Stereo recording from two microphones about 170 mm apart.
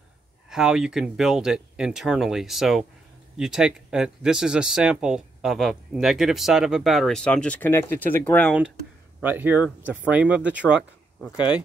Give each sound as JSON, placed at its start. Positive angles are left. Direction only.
{"t": 0.5, "sound": "speech", "side_deg": -5}
{"t": 9.2, "sound": "speech", "side_deg": -10}
{"t": 10.8, "sound": "speech", "side_deg": 0}
{"t": 11.3, "sound": "speech", "side_deg": 30}